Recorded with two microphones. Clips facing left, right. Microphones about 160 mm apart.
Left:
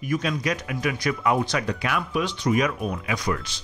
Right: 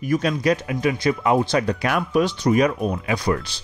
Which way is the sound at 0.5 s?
30° right (ahead or behind).